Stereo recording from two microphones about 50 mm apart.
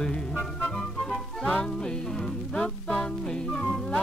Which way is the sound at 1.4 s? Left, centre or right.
Centre.